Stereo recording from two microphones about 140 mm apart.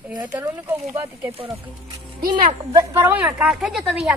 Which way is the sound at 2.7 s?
20° right (ahead or behind).